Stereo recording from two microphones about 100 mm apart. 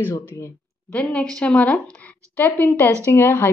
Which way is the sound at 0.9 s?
15° left (ahead or behind).